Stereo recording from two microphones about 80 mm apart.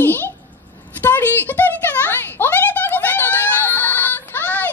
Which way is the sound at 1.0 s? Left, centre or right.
Left.